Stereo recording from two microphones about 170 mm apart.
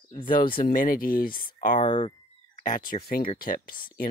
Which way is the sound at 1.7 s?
30° left (ahead or behind).